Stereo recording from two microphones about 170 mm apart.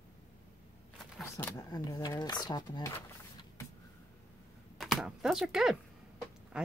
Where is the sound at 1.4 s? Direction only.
15° left (ahead or behind).